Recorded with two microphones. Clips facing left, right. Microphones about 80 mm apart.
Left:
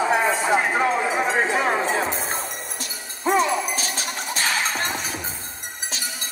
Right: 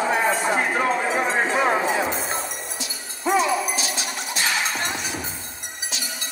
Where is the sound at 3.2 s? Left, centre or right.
Left.